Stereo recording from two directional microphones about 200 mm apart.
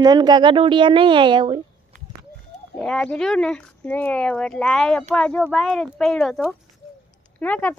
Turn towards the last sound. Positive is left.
turn(degrees=10)  # may be behind; listen again after turning